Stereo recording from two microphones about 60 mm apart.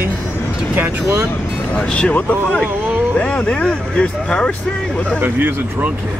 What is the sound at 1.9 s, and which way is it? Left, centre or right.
Speech, centre.